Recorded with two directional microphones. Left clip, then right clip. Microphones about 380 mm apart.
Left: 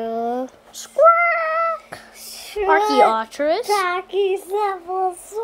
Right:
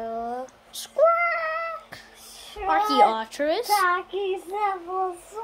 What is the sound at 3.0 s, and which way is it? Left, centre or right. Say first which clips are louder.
Speech: left 4 dB; centre.